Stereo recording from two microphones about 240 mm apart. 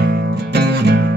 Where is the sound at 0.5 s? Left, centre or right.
Right.